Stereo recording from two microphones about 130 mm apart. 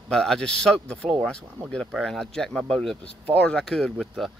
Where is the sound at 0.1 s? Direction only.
5° left (ahead or behind).